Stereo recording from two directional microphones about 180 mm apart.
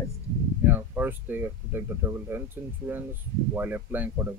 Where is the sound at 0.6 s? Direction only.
10° right (ahead or behind).